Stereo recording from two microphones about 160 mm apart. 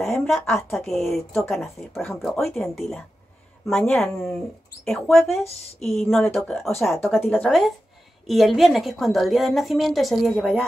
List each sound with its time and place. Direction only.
0.0 s a woman's voice: centre (ahead or behind)
5.4 s speech: 40° left (ahead or behind)
6.3 s a woman's voice: centre (ahead or behind)